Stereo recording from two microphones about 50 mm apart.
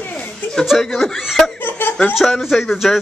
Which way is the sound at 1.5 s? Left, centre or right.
Left.